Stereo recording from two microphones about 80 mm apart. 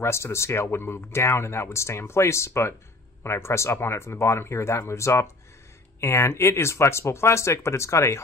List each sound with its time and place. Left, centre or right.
0.0 s speech: left